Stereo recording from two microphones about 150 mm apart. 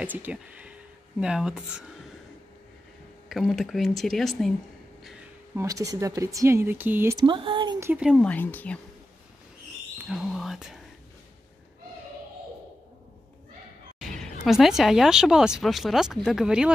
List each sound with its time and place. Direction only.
0.0 s speech: 10° right (ahead or behind)
3.3 s speech: centre (ahead or behind)
5.6 s speech: 20° right (ahead or behind)
7.2 s speech: 35° right (ahead or behind)
7.8 s speech: 10° right (ahead or behind)
8.2 s speech: 10° left (ahead or behind)
9.9 s speech: centre (ahead or behind)
14.4 s speech: centre (ahead or behind)